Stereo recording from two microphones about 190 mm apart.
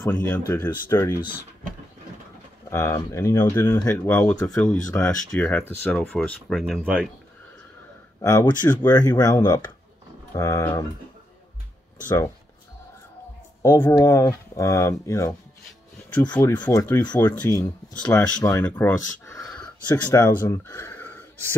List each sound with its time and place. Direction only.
0.0 s speech: 10° left (ahead or behind)
2.7 s speech: 15° left (ahead or behind); by 7.1 s 5° right (ahead or behind)
8.2 s speech: 15° left (ahead or behind)
13.6 s speech: 20° left (ahead or behind)